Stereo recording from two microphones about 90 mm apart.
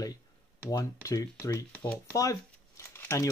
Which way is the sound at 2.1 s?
35° left (ahead or behind).